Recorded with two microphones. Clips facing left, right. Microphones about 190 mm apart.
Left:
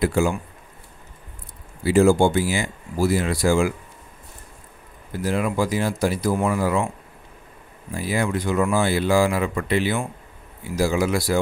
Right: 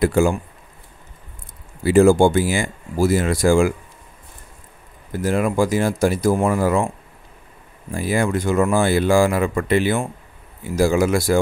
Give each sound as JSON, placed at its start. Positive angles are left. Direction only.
{"t": 0.0, "sound": "speech", "side_deg": -50}
{"t": 1.9, "sound": "speech", "side_deg": -50}
{"t": 5.1, "sound": "speech", "side_deg": -50}
{"t": 7.9, "sound": "speech", "side_deg": -50}